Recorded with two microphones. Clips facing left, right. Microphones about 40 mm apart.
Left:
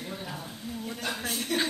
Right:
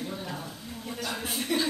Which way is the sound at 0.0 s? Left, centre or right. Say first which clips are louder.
Right 2 dB; centre.